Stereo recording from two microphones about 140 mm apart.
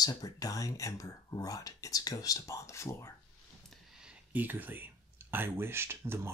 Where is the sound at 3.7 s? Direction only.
5° right (ahead or behind).